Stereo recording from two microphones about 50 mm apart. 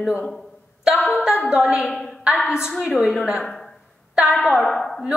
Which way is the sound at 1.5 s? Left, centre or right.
Centre.